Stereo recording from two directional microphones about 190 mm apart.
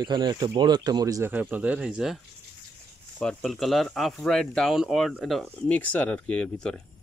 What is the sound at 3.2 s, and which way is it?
Speech, centre (ahead or behind).